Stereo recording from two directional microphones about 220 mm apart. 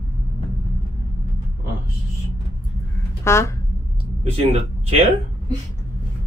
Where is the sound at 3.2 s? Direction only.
10° left (ahead or behind).